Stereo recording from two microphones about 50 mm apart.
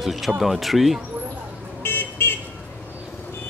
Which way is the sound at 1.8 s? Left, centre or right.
Left.